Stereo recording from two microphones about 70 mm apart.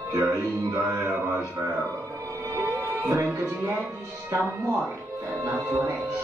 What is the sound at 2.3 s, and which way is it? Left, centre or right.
Music, right.